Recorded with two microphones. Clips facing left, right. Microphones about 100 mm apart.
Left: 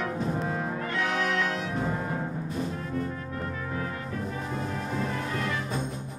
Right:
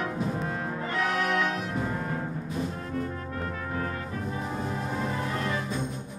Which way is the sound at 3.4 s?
5° right (ahead or behind).